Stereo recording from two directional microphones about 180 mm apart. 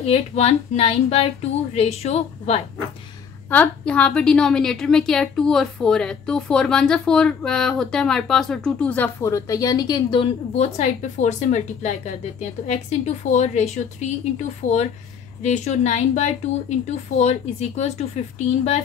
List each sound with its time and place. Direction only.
0.0 s speech: 35° left (ahead or behind)
3.4 s a woman's voice: 10° left (ahead or behind); by 14.1 s 40° left (ahead or behind)
15.4 s speech: 40° left (ahead or behind)